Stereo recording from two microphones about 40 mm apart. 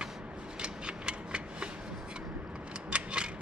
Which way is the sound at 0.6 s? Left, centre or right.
Right.